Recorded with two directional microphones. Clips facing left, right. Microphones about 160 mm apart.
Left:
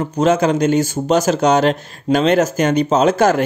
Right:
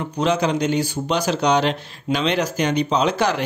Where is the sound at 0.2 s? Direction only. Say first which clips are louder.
Left 5 dB; 45° left (ahead or behind).